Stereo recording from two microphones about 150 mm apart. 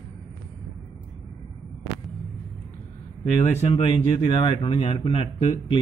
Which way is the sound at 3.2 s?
45° left (ahead or behind).